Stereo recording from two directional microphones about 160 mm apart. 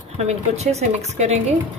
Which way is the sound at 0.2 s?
45° right (ahead or behind).